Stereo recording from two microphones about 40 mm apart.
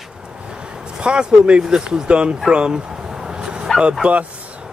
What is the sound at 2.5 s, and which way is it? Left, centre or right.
Dog, right.